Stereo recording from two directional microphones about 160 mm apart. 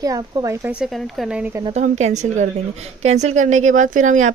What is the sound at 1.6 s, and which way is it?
A woman's voice, 45° right (ahead or behind).